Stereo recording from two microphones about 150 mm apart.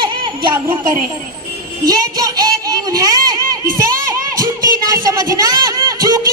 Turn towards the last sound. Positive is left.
turn(degrees=-25)  # may be behind; listen again after turning